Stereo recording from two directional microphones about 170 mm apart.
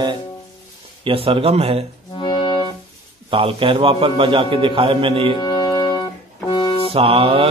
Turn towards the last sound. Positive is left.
turn(degrees=-35)  # may be behind; listen again after turning